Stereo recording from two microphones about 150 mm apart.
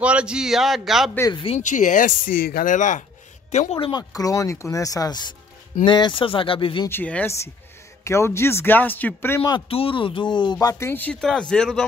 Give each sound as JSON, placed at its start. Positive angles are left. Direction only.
{"t": 0.0, "sound": "speech", "side_deg": -5}
{"t": 1.3, "sound": "speech", "side_deg": 35}
{"t": 1.6, "sound": "speech", "side_deg": 55}
{"t": 3.5, "sound": "speech", "side_deg": 40}
{"t": 4.1, "sound": "speech", "side_deg": 25}
{"t": 6.9, "sound": "speech", "side_deg": 10}
{"t": 9.7, "sound": "speech", "side_deg": 40}